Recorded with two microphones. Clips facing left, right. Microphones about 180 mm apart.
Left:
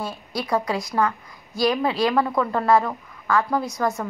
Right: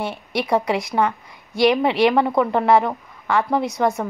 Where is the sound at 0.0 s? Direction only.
25° right (ahead or behind).